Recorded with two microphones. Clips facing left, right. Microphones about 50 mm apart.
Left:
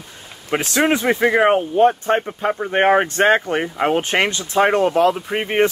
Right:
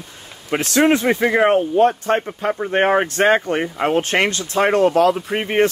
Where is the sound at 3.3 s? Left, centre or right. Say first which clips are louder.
Even; centre.